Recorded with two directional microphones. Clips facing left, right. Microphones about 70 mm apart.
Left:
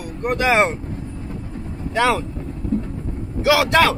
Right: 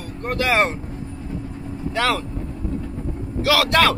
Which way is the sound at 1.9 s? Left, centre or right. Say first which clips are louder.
Left 3 dB; centre.